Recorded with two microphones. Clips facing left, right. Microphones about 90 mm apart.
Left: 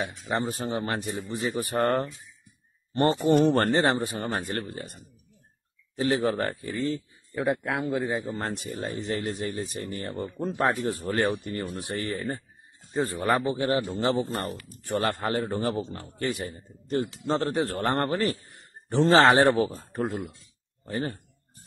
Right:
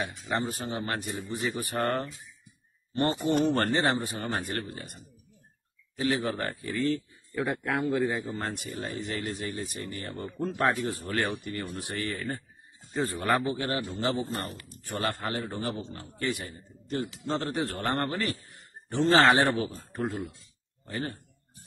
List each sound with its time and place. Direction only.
0.3 s speech: 30° left (ahead or behind)
3.3 s speech: 45° left (ahead or behind); by 4.9 s 30° left (ahead or behind)
5.9 s speech: 35° left (ahead or behind)